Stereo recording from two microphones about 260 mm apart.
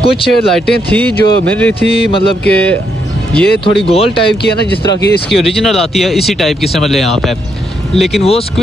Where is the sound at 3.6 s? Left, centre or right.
Centre.